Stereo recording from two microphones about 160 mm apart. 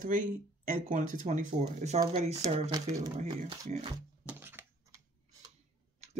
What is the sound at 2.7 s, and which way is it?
Speech, 25° right (ahead or behind).